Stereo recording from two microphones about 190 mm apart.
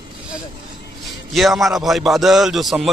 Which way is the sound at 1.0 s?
Centre (ahead or behind).